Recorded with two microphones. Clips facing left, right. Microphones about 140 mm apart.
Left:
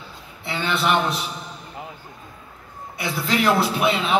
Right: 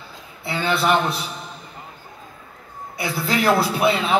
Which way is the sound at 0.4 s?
35° right (ahead or behind).